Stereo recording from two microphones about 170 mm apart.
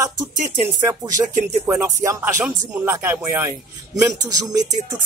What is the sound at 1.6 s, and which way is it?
Speech, 15° right (ahead or behind).